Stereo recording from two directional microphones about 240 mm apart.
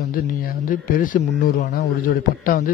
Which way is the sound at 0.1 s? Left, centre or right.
Left.